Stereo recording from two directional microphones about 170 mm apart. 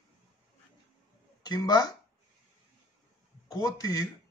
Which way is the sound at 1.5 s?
20° left (ahead or behind).